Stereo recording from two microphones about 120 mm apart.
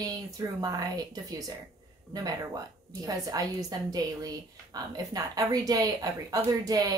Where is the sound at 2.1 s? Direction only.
30° right (ahead or behind).